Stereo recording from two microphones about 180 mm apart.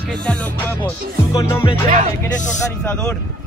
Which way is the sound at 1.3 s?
15° left (ahead or behind).